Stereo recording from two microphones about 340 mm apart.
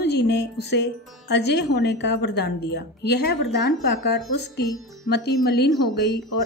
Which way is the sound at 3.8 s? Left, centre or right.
Left.